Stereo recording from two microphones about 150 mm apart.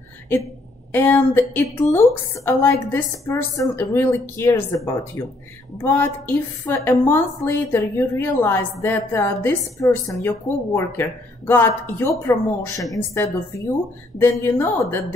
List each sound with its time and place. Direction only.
0.9 s a woman's voice: 15° left (ahead or behind)